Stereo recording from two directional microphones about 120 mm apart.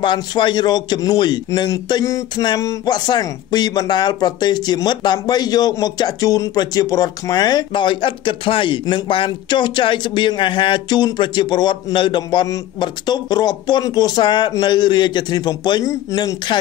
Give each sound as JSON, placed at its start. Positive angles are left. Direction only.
{"t": 0.0, "sound": "speech", "side_deg": 40}